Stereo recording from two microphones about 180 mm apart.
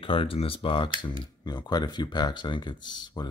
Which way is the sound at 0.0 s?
30° left (ahead or behind).